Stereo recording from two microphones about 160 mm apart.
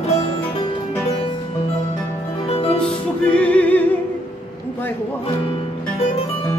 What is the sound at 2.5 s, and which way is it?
Music, 35° left (ahead or behind).